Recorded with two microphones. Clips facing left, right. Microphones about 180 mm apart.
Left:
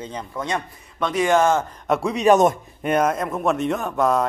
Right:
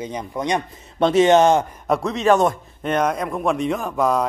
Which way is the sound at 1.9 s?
Centre (ahead or behind).